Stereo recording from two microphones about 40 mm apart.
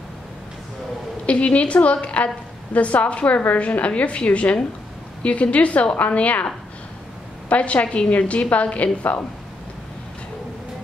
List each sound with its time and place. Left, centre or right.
1.2 s a woman's voice: left
7.4 s a woman's voice: left